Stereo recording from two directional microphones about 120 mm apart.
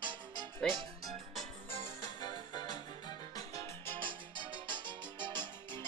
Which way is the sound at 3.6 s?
20° left (ahead or behind).